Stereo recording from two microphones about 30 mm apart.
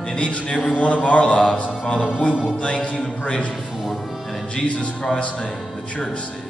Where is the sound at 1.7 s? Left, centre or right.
Left.